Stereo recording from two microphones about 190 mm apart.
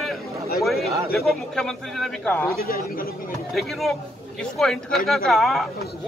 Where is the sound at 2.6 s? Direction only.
50° left (ahead or behind).